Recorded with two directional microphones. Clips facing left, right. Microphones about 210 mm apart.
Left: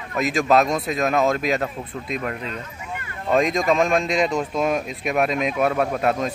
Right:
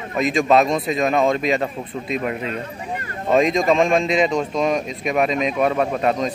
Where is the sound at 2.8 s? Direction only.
40° right (ahead or behind).